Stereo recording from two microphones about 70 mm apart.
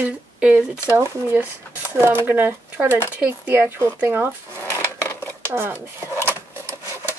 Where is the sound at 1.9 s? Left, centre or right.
Right.